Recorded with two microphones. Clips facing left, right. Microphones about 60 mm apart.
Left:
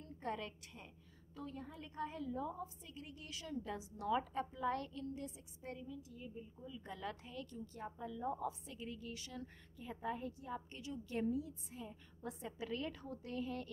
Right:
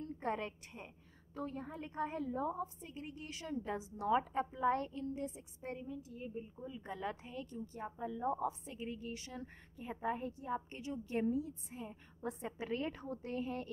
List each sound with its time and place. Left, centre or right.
0.0 s a woman's voice: right
6.8 s a woman's voice: right